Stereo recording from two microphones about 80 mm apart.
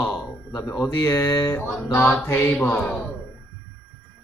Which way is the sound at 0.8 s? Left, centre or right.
Left.